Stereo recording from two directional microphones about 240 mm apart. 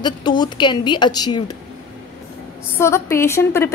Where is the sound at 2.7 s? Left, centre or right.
Centre.